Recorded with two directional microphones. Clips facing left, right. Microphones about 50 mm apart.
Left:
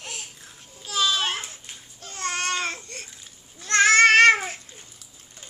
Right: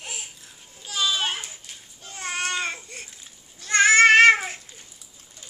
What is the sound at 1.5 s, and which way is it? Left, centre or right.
Babbling, centre.